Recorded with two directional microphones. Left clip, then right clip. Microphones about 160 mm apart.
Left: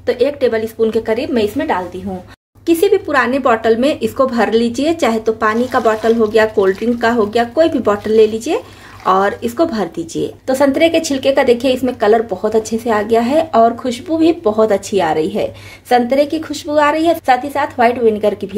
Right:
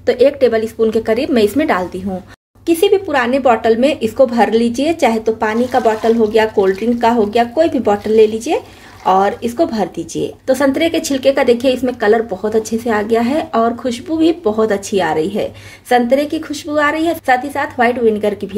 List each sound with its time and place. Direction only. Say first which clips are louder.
0.0 s speech: right 3 dB; 20° right (ahead or behind)
1.3 s a woman's voice: right 4 dB; 40° right (ahead or behind)
2.6 s speech: even; centre (ahead or behind)